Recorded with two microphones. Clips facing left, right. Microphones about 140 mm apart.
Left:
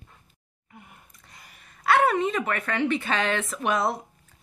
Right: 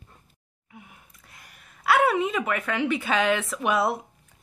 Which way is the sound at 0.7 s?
5° right (ahead or behind).